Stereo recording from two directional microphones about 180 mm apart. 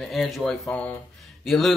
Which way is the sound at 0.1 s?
Centre (ahead or behind).